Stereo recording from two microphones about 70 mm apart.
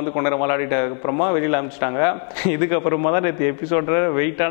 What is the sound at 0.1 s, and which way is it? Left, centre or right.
A man's voice, left.